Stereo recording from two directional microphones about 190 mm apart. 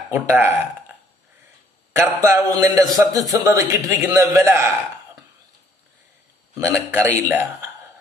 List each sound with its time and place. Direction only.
0.1 s a man's voice: 10° right (ahead or behind)
2.0 s a man's voice: 15° right (ahead or behind)
6.9 s a man's voice: 10° right (ahead or behind)